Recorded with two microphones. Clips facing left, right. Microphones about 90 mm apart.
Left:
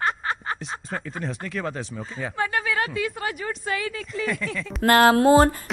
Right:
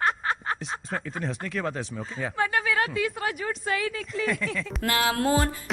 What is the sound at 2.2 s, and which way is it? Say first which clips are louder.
A woman's voice: even; centre (ahead or behind).